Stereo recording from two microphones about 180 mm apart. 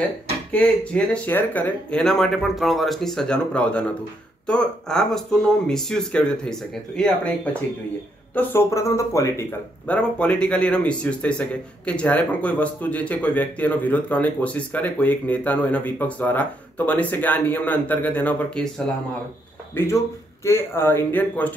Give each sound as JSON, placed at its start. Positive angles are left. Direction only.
{"t": 0.5, "sound": "speech", "side_deg": 5}
{"t": 8.4, "sound": "speech", "side_deg": 15}
{"t": 19.8, "sound": "speech", "side_deg": 10}